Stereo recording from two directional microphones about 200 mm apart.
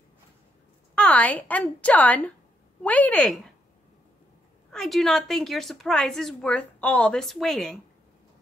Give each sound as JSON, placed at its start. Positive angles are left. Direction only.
{"t": 0.9, "sound": "a woman's voice", "side_deg": 5}
{"t": 4.7, "sound": "a woman's voice", "side_deg": 0}